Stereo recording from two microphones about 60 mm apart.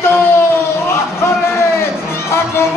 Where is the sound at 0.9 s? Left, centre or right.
Left.